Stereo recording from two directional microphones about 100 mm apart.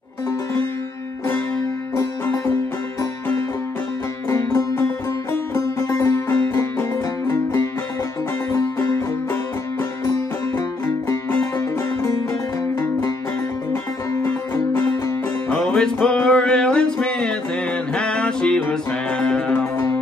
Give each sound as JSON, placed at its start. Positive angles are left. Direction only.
{"t": 2.0, "sound": "music", "side_deg": 30}
{"t": 11.1, "sound": "music", "side_deg": 30}
{"t": 14.2, "sound": "music", "side_deg": 25}
{"t": 15.5, "sound": "music", "side_deg": 10}
{"t": 19.6, "sound": "music", "side_deg": 25}